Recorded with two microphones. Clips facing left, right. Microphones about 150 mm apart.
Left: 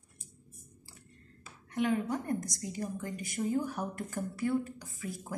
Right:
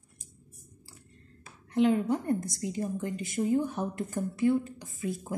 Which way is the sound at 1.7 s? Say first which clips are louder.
Right 6 dB; 30° right (ahead or behind).